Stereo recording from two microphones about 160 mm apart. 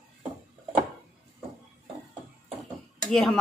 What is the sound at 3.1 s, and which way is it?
Speech, centre (ahead or behind).